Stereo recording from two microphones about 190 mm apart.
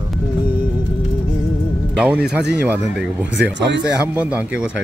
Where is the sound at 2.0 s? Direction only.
5° right (ahead or behind).